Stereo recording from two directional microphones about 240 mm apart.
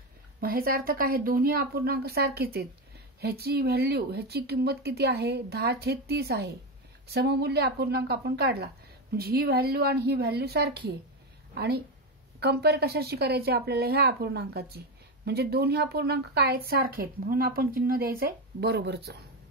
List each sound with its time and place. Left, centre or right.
0.4 s a woman's voice: right